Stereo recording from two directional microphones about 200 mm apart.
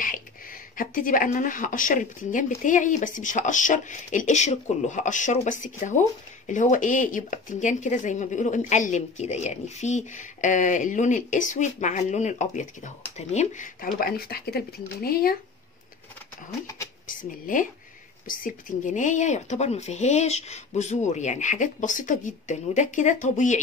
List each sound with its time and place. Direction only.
0.7 s speech: 45° left (ahead or behind)
17.2 s speech: 40° left (ahead or behind)